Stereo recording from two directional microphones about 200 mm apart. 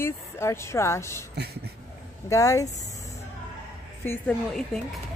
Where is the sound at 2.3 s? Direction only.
15° left (ahead or behind).